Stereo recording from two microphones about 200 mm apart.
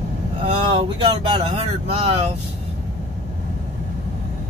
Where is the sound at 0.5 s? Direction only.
25° right (ahead or behind).